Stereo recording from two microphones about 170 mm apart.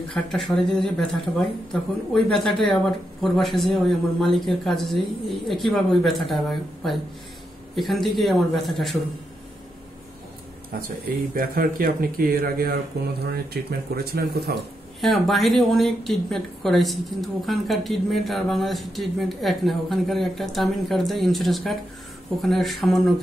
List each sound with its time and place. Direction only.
0.1 s speech: centre (ahead or behind)
10.7 s speech: 60° right (ahead or behind)
15.0 s speech: centre (ahead or behind)